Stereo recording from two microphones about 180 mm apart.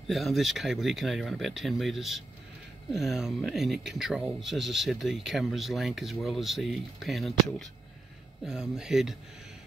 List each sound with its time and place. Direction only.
0.1 s speech: centre (ahead or behind)